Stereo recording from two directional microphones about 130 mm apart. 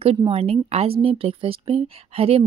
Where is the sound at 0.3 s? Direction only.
50° right (ahead or behind).